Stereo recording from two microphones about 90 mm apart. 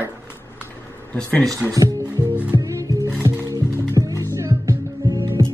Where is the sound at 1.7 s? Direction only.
45° right (ahead or behind).